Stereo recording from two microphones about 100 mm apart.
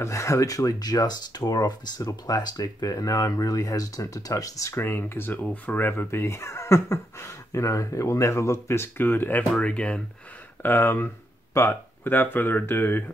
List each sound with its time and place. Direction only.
0.0 s speech: 30° left (ahead or behind)